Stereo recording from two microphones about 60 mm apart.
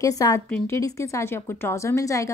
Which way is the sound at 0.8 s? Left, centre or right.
Left.